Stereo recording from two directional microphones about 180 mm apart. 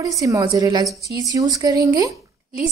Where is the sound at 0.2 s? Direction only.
20° right (ahead or behind).